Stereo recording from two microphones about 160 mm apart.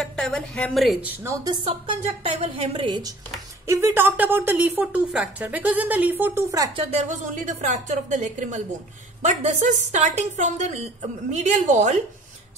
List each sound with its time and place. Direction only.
0.0 s a woman's voice: 5° left (ahead or behind)
1.2 s a woman's voice: 20° right (ahead or behind)
3.6 s a woman's voice: 15° right (ahead or behind)
6.7 s a woman's voice: 40° right (ahead or behind)